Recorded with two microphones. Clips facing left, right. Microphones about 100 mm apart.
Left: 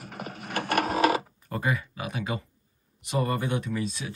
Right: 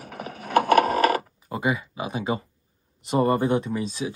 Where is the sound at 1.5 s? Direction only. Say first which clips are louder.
Right 3 dB; 15° right (ahead or behind).